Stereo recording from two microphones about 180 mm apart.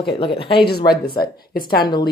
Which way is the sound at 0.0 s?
30° left (ahead or behind).